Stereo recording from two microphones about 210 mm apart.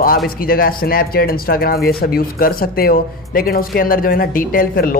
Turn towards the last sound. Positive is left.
turn(degrees=40)  # may be behind; listen again after turning